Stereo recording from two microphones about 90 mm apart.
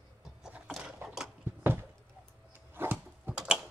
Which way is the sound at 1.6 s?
25° right (ahead or behind).